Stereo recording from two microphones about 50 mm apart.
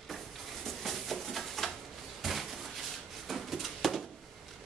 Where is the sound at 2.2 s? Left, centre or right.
Centre.